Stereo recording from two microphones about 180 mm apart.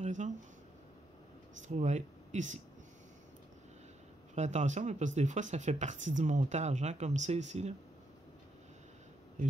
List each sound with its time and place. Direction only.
0.0 s a sound: 40° right (ahead or behind)
1.7 s speech: 40° right (ahead or behind)
4.4 s speech: 40° right (ahead or behind)